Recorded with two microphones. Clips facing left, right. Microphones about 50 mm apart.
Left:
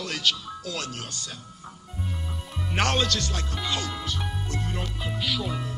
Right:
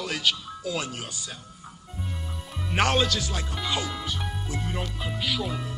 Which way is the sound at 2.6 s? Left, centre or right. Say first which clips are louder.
Right 2 dB; centre.